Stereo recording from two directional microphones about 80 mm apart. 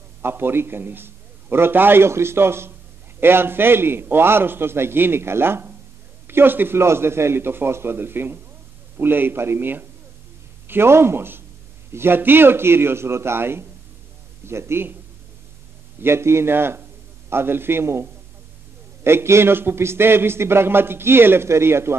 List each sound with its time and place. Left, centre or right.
0.2 s a man's voice: right
16.0 s a man's voice: right
19.0 s a man's voice: right